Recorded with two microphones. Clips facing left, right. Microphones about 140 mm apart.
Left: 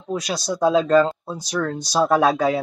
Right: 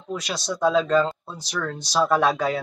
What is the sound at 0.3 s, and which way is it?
Speech, 40° left (ahead or behind).